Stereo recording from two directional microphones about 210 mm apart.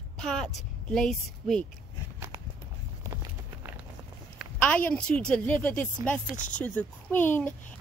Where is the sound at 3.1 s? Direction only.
15° right (ahead or behind).